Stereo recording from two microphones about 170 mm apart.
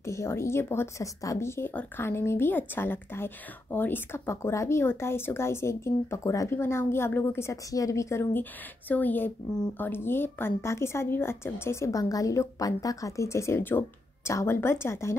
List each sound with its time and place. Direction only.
0.0 s speech: 15° left (ahead or behind)